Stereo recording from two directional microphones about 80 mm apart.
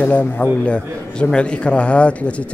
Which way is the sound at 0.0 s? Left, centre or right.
Centre.